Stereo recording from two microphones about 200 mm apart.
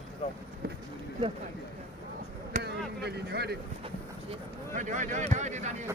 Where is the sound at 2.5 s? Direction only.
35° right (ahead or behind).